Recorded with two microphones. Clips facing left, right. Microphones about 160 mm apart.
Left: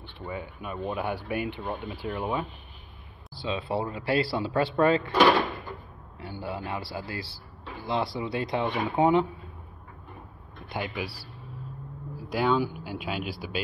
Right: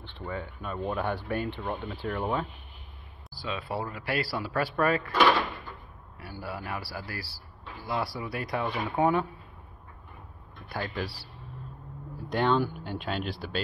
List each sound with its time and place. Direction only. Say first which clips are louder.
0.0 s speech: even; 10° left (ahead or behind)
3.3 s speech: left 4 dB; 25° left (ahead or behind)
6.1 s speech: left 3 dB; 20° left (ahead or behind)
10.7 s speech: left 1 dB; 15° left (ahead or behind)
12.2 s speech: even; 5° left (ahead or behind)